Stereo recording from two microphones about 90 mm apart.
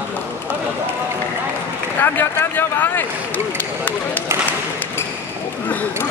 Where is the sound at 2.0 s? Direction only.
25° left (ahead or behind).